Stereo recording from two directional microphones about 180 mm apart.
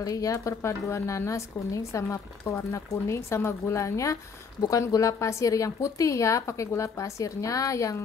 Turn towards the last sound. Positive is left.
turn(degrees=20)  # may be behind; listen again after turning